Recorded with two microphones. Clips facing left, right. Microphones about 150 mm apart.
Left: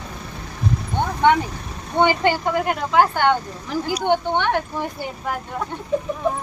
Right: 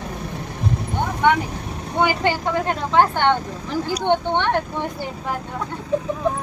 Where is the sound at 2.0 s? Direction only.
15° left (ahead or behind).